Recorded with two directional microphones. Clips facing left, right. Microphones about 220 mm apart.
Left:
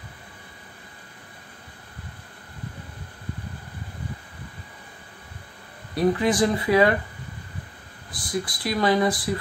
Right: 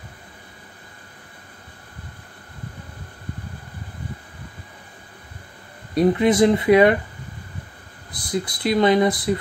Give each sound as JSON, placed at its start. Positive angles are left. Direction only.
{"t": 5.9, "sound": "speech", "side_deg": -20}
{"t": 8.1, "sound": "speech", "side_deg": -20}